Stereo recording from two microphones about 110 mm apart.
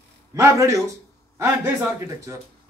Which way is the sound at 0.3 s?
30° right (ahead or behind).